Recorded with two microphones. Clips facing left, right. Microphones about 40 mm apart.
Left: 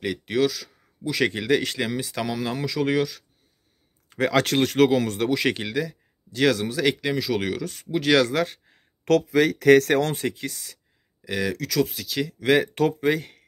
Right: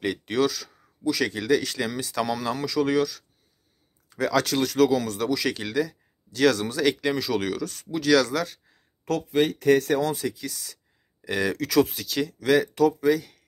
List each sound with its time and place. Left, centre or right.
0.0 s speech: centre
1.0 s speech: left
4.1 s speech: left
5.6 s speech: centre
8.0 s speech: left
9.0 s speech: left
10.1 s speech: left
11.2 s speech: centre
12.1 s speech: centre
12.4 s speech: left
12.7 s speech: left